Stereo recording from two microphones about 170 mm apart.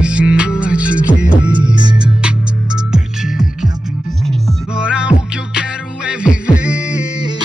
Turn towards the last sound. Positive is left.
turn(degrees=-5)  # may be behind; listen again after turning